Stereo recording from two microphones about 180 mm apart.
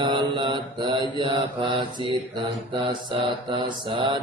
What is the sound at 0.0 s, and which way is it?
Mantra, 25° right (ahead or behind).